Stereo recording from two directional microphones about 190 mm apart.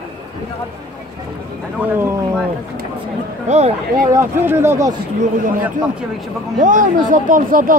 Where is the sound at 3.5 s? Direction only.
35° right (ahead or behind).